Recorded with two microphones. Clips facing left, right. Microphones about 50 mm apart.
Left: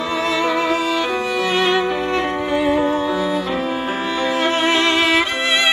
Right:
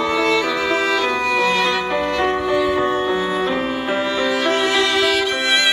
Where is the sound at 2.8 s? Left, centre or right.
Right.